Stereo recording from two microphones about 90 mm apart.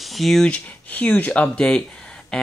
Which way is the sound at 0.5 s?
15° left (ahead or behind).